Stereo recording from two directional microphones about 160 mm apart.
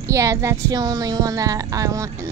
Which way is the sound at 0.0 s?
20° right (ahead or behind).